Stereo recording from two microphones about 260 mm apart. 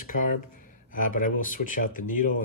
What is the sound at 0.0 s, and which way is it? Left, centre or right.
Speech, left.